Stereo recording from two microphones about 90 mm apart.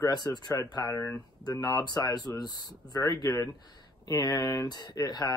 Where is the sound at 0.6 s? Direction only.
40° left (ahead or behind).